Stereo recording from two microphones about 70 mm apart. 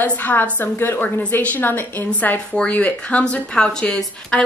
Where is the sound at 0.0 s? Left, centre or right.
Left.